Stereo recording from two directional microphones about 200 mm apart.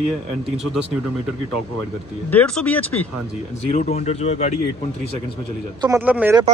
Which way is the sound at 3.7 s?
35° left (ahead or behind).